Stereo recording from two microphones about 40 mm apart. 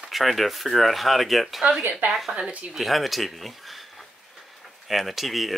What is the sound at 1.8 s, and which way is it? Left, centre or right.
Speech, right.